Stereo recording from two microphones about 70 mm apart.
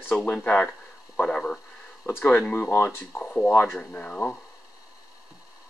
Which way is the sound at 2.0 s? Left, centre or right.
Left.